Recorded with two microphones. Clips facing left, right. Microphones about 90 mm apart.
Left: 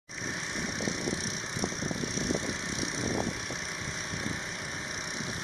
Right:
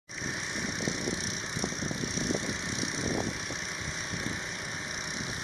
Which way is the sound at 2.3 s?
Centre (ahead or behind).